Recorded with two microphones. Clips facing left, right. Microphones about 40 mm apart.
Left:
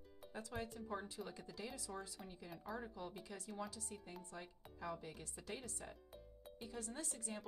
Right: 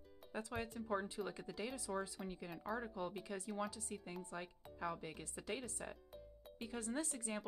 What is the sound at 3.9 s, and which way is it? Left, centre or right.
A woman's voice, right.